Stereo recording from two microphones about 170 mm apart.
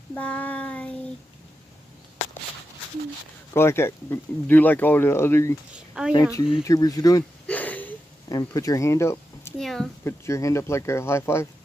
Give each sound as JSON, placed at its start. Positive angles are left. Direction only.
{"t": 0.1, "sound": "child singing", "side_deg": 10}
{"t": 3.5, "sound": "speech", "side_deg": 15}
{"t": 7.4, "sound": "a sound", "side_deg": 10}
{"t": 8.3, "sound": "speech", "side_deg": 20}
{"t": 9.6, "sound": "a woman's voice", "side_deg": 0}
{"t": 10.0, "sound": "speech", "side_deg": 15}